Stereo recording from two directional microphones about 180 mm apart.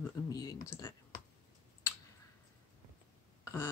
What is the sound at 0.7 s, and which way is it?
Speech, 15° left (ahead or behind).